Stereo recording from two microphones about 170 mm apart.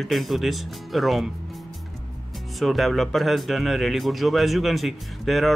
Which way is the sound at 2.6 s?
Centre (ahead or behind).